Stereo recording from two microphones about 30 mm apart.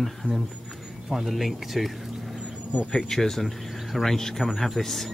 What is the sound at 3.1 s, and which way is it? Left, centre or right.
Speech, centre.